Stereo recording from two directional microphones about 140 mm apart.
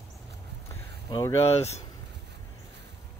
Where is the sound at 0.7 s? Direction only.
25° left (ahead or behind).